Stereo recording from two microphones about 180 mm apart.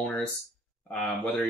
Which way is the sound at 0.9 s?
5° left (ahead or behind).